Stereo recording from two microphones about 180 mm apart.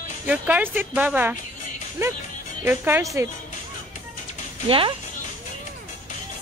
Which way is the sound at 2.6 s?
10° right (ahead or behind).